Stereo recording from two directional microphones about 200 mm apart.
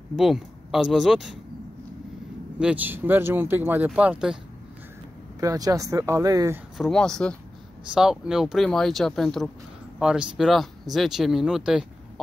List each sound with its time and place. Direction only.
0.1 s speech: centre (ahead or behind)
2.6 s speech: 10° right (ahead or behind)
5.4 s speech: 15° right (ahead or behind)
6.8 s speech: 5° left (ahead or behind)